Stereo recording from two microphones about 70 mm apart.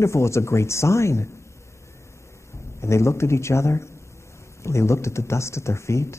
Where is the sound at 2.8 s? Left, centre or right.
Left.